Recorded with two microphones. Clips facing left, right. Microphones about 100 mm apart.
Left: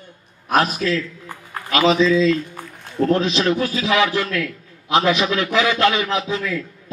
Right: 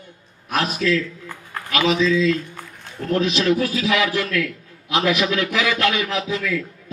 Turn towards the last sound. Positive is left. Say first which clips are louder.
# left 1 dB
turn(degrees=30)  # may be behind; listen again after turning